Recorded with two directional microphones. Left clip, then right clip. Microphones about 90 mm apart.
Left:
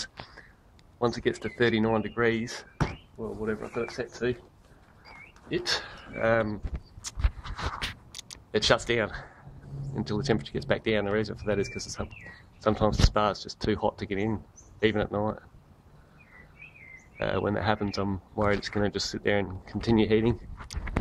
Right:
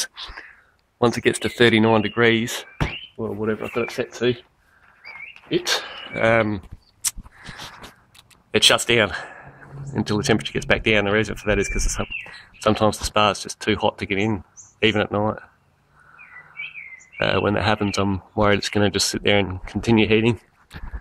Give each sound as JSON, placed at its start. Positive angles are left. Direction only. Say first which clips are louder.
{"t": 0.9, "sound": "speech", "louder": "right 8 dB", "side_deg": -35}
{"t": 5.9, "sound": "speech", "louder": "right 8 dB", "side_deg": -50}
{"t": 8.5, "sound": "speech", "louder": "right 8 dB", "side_deg": -15}
{"t": 13.7, "sound": "speech", "louder": "right 7 dB", "side_deg": -5}
{"t": 17.2, "sound": "speech", "louder": "right 8 dB", "side_deg": -15}
{"t": 19.9, "sound": "speech", "louder": "right 7 dB", "side_deg": 0}